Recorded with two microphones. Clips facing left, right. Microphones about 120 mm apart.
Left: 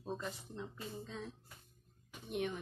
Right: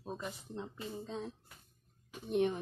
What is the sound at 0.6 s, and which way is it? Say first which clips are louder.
Speech: right 3 dB; 35° right (ahead or behind).